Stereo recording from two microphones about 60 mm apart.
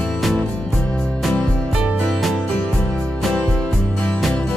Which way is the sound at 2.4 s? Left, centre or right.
Centre.